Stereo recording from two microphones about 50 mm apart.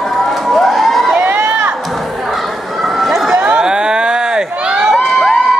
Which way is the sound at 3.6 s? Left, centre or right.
Centre.